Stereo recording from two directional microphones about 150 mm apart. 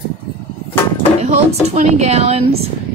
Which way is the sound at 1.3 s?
45° right (ahead or behind).